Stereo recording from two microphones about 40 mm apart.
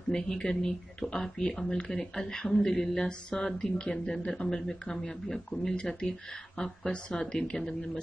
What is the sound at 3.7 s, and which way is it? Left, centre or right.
A woman's voice, left.